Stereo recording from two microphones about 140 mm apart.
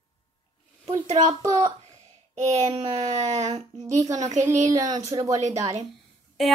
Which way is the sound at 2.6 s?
45° right (ahead or behind).